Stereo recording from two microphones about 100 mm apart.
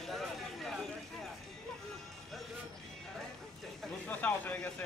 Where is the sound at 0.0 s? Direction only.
Centre (ahead or behind).